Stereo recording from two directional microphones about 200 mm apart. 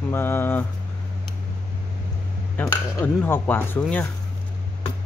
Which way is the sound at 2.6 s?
10° left (ahead or behind).